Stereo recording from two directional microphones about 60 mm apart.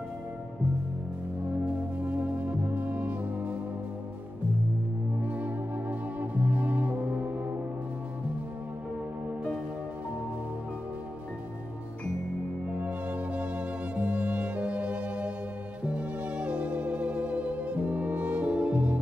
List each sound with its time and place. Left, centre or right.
2.0 s music: right
5.2 s music: right
12.6 s music: right